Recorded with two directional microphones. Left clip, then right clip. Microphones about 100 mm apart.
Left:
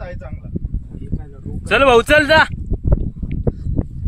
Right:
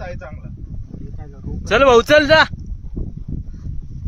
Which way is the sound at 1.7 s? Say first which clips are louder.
Even; centre (ahead or behind).